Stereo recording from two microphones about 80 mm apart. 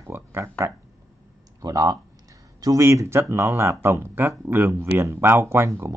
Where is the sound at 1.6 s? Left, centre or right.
Right.